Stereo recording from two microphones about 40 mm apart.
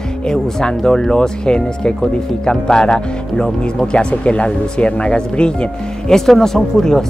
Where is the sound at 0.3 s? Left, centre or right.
Centre.